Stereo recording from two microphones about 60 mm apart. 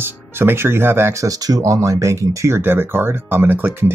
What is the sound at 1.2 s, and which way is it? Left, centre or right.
Speech, right.